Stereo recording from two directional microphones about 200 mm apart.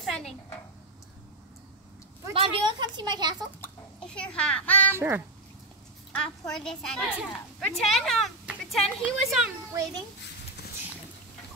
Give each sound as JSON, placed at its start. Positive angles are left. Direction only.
{"t": 0.0, "sound": "a sound", "side_deg": 0}
{"t": 2.3, "sound": "speech", "side_deg": -25}
{"t": 3.6, "sound": "a child's voice", "side_deg": 5}
{"t": 4.9, "sound": "a child's voice", "side_deg": -10}
{"t": 6.1, "sound": "a woman's voice", "side_deg": 5}
{"t": 9.7, "sound": "a child's voice", "side_deg": -15}